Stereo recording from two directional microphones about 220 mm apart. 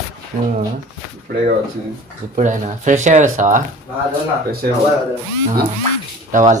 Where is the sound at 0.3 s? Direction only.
35° right (ahead or behind).